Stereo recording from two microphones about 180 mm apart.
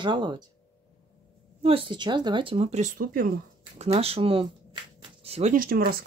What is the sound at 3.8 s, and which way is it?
Speech, 35° right (ahead or behind).